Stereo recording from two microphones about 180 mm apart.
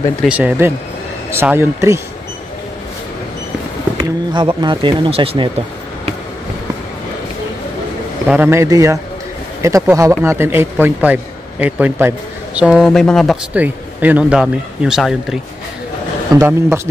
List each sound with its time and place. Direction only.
0.2 s speech: 5° right (ahead or behind)
4.0 s speech: 25° right (ahead or behind)
8.3 s speech: 10° right (ahead or behind)
13.6 s speech: 10° right (ahead or behind)
16.3 s speech: 15° right (ahead or behind)